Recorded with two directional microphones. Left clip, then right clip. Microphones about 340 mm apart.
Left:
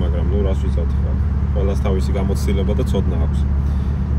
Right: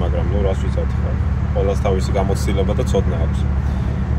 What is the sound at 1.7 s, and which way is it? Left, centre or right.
Speech, centre.